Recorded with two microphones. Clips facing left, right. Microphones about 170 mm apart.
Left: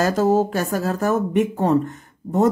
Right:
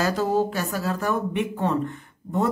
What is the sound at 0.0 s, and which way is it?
Speech, 45° left (ahead or behind).